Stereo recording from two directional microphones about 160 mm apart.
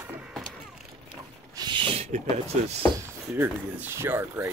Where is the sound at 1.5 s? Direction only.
30° right (ahead or behind).